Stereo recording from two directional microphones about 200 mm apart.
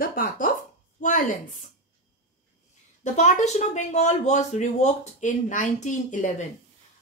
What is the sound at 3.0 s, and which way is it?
Speech, 35° left (ahead or behind).